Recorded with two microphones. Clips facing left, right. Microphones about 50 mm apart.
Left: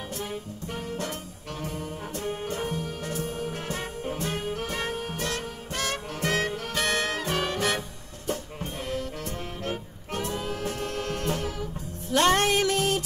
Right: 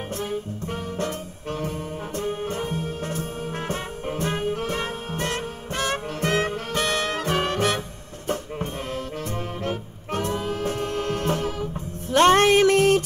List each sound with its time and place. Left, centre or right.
0.7 s music: right